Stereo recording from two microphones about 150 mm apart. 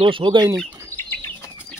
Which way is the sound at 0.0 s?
35° right (ahead or behind).